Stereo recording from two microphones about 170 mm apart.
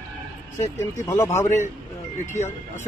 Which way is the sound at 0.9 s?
20° left (ahead or behind).